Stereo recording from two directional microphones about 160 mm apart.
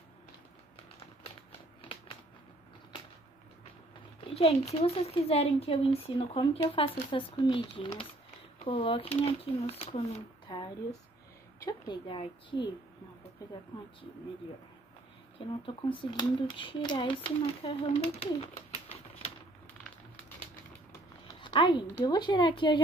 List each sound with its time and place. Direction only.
1.8 s a sound: 35° left (ahead or behind)
4.3 s speech: 40° left (ahead or behind)
11.6 s a woman's voice: 30° left (ahead or behind)
15.3 s speech: 35° left (ahead or behind)
21.3 s a sound: 30° left (ahead or behind)
22.0 s a woman's voice: 30° left (ahead or behind)